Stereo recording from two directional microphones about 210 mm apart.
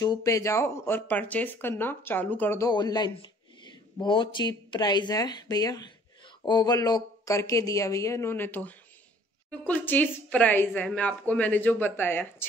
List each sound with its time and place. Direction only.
0.0 s speech: 15° left (ahead or behind)